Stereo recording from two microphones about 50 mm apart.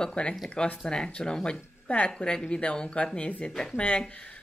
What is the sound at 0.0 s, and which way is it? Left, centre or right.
Speech, centre.